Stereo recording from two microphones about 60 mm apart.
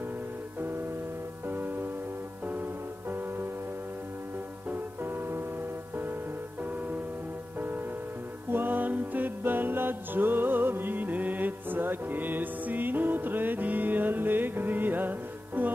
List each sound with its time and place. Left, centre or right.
1.5 s music: right
4.6 s music: right
8.5 s music: right